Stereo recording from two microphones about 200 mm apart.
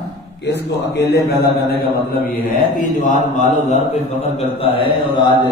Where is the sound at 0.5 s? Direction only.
55° left (ahead or behind).